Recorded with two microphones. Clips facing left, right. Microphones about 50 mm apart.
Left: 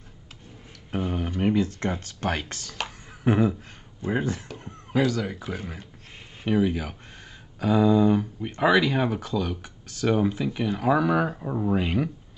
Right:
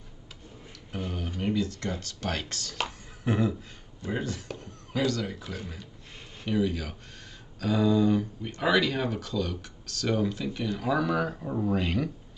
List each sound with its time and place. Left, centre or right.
0.9 s a sound: left
1.3 s speech: left
4.9 s speech: centre
5.6 s speech: left